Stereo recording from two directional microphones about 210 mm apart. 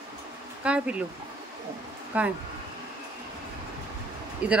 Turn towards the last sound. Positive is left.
turn(degrees=-5)  # may be behind; listen again after turning